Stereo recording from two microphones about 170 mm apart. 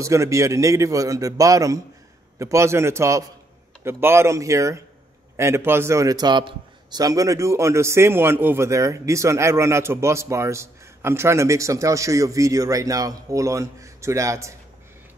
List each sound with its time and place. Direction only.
0.0 s a man's voice: 20° right (ahead or behind)